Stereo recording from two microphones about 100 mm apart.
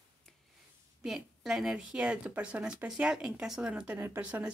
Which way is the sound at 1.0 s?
5° right (ahead or behind).